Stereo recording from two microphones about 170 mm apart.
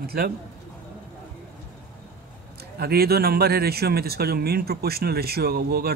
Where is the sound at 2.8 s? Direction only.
65° right (ahead or behind).